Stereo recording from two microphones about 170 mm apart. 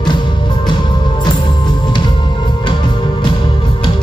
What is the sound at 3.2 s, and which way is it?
Music, 30° left (ahead or behind).